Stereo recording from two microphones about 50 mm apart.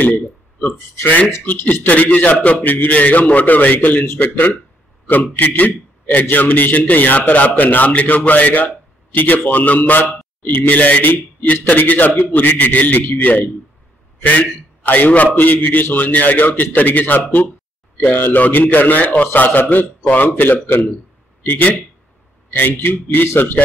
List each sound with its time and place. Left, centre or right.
0.0 s a man's voice: left
22.5 s a man's voice: left